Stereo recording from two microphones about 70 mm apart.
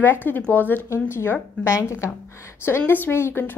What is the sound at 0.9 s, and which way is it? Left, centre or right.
Speech, left.